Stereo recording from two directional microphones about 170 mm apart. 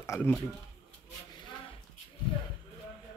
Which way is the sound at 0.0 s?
15° left (ahead or behind).